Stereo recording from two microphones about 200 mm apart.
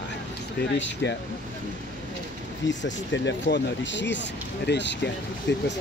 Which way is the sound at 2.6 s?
65° left (ahead or behind).